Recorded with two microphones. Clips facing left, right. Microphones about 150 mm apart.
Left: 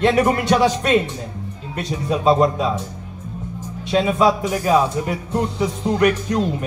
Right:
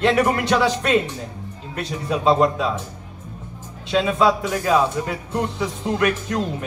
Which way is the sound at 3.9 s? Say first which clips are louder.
Left 1 dB; 15° left (ahead or behind).